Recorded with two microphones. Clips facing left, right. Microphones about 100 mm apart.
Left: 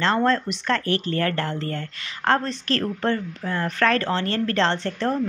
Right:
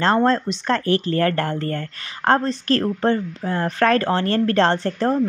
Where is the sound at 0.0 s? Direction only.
35° right (ahead or behind).